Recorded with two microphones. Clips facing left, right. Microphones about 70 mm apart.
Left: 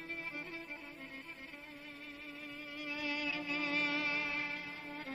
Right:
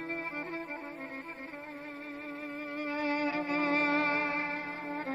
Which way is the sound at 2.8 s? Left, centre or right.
Right.